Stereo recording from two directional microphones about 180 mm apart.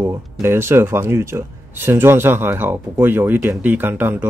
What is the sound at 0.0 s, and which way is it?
Speech, 15° right (ahead or behind).